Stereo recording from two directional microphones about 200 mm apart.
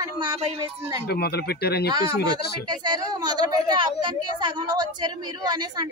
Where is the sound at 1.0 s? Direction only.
55° left (ahead or behind).